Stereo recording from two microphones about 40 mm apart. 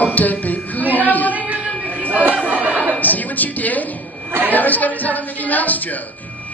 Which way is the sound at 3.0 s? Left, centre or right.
Left.